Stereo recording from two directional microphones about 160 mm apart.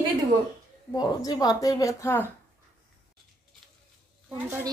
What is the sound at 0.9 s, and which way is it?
Speech, 25° left (ahead or behind).